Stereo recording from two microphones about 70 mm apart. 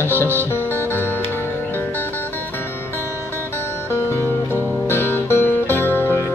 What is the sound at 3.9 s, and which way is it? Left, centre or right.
Music, left.